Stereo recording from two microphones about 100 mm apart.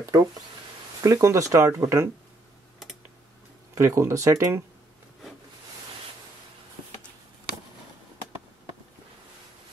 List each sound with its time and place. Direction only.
0.1 s speech: 40° right (ahead or behind)
3.7 s speech: 30° right (ahead or behind)